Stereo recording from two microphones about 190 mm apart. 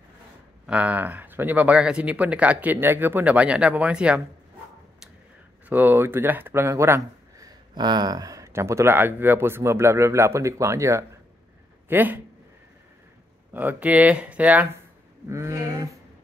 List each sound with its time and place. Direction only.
0.7 s a man's voice: 10° right (ahead or behind)
5.7 s a man's voice: 10° right (ahead or behind)
13.5 s a man's voice: 10° right (ahead or behind)